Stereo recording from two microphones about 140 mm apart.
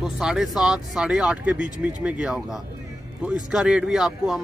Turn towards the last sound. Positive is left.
turn(degrees=-5)  # may be behind; listen again after turning